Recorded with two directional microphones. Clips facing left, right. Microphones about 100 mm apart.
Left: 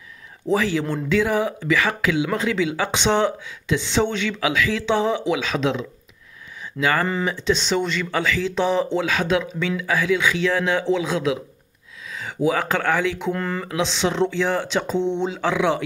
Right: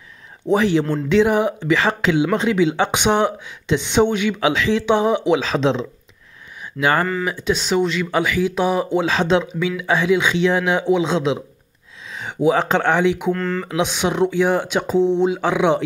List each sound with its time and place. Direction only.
0.5 s speech: 20° right (ahead or behind)
4.4 s speech: 25° right (ahead or behind)
5.4 s speech: 30° right (ahead or behind); by 9.0 s 10° right (ahead or behind)
9.0 s speech: 30° right (ahead or behind)
13.3 s speech: 15° left (ahead or behind)
13.7 s speech: 15° right (ahead or behind)
15.3 s speech: 20° right (ahead or behind)